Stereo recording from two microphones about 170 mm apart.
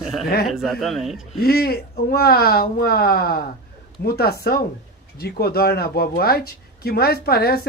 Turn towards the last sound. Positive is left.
turn(degrees=65)  # may be behind; listen again after turning